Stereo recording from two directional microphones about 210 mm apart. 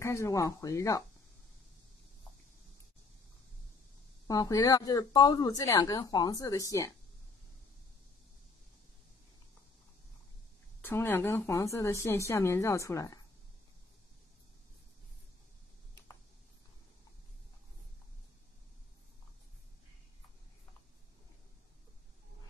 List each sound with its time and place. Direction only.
0.0 s speech: 15° left (ahead or behind)
4.3 s speech: 15° left (ahead or behind)
10.8 s speech: 10° left (ahead or behind)